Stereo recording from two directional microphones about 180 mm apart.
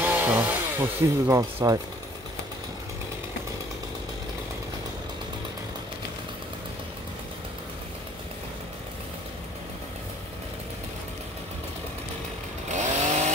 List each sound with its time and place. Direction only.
0.0 s speech: 10° right (ahead or behind)
12.6 s chainsaw: 40° right (ahead or behind)